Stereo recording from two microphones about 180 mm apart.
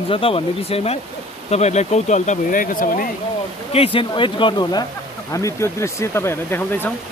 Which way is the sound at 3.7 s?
30° left (ahead or behind).